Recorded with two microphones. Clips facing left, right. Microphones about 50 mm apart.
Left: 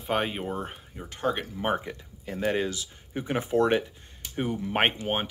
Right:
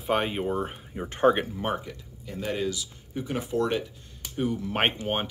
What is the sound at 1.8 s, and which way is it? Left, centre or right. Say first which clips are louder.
Speech: left 3 dB; left.